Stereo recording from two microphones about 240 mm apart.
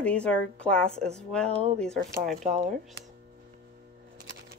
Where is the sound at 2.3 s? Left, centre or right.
Right.